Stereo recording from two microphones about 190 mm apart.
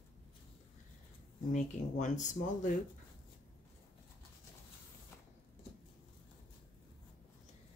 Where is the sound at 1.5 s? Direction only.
40° left (ahead or behind).